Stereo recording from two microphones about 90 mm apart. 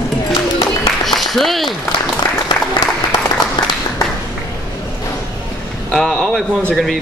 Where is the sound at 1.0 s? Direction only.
Centre (ahead or behind).